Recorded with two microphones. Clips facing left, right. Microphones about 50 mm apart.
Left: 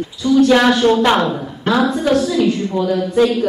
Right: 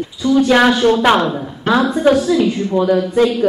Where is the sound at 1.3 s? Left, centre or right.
Centre.